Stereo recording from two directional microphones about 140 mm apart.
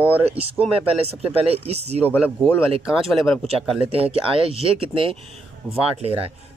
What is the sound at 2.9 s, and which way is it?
Speech, 5° left (ahead or behind).